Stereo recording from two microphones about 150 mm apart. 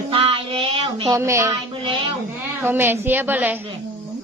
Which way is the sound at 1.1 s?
20° right (ahead or behind).